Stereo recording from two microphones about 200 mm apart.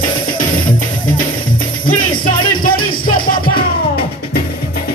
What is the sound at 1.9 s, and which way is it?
Music, 45° left (ahead or behind).